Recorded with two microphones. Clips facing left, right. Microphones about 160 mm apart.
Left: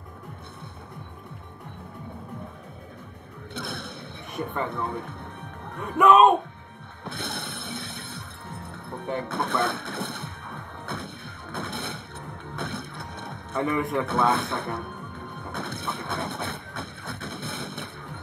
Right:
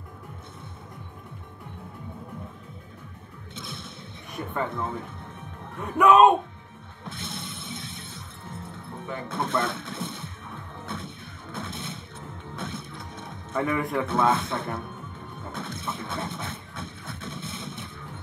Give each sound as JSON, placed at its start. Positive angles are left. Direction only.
{"t": 3.5, "sound": "music", "side_deg": 65}
{"t": 4.4, "sound": "speech", "side_deg": 65}
{"t": 5.8, "sound": "speech", "side_deg": 0}
{"t": 7.1, "sound": "music", "side_deg": 65}
{"t": 13.7, "sound": "speech", "side_deg": 0}
{"t": 14.0, "sound": "speech", "side_deg": 65}
{"t": 15.3, "sound": "music", "side_deg": 65}